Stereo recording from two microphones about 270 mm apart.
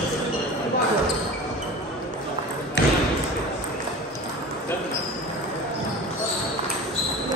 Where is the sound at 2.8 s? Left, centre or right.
Left.